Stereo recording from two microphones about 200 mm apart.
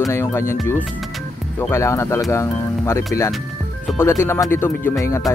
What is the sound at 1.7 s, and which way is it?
Speech, 15° left (ahead or behind).